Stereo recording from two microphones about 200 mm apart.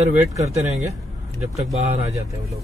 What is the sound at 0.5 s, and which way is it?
Speech, 35° right (ahead or behind).